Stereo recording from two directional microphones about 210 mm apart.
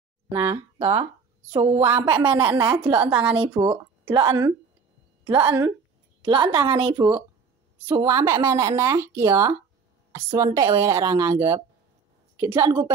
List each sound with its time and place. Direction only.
0.3 s speech: 15° right (ahead or behind)
0.7 s a woman's voice: 30° right (ahead or behind)
2.4 s speech: 10° right (ahead or behind)
2.8 s a woman's voice: 20° right (ahead or behind)
3.1 s a woman's voice: 5° right (ahead or behind)
3.3 s a woman's voice: 25° right (ahead or behind)
3.6 s a sound: 10° right (ahead or behind)
4.1 s a woman's voice: 20° right (ahead or behind)